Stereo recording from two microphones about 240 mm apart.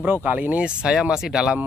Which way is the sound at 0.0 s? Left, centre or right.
Centre.